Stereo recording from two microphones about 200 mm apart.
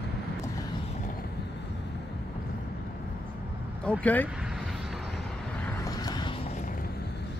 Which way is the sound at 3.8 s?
5° left (ahead or behind).